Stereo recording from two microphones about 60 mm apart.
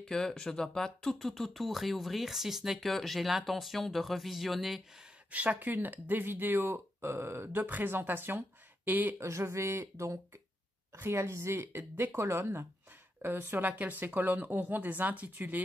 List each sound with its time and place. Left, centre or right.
0.0 s speech: centre
5.3 s speech: right
9.2 s speech: right
11.0 s a woman's voice: right
13.2 s speech: right